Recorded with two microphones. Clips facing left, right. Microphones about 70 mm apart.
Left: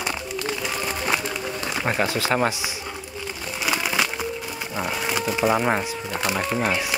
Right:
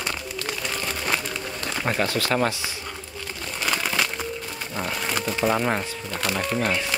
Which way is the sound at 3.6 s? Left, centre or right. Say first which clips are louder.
Left 1 dB; centre.